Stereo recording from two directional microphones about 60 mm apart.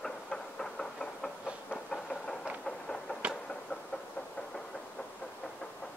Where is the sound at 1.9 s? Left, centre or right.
Centre.